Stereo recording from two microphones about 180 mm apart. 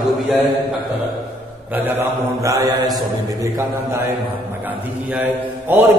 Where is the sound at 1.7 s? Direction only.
10° right (ahead or behind).